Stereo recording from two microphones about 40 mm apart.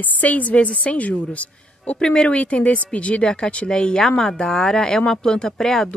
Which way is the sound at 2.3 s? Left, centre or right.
Left.